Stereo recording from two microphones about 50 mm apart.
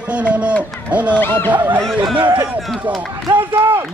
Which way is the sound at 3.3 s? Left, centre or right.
Right.